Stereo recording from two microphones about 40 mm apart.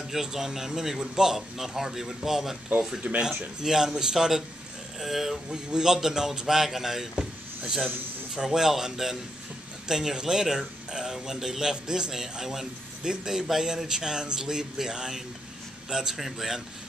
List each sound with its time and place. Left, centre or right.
0.0 s speech: centre
3.1 s speech: right; by 5.4 s centre
5.5 s speech: centre
8.5 s speech: centre
16.2 s speech: centre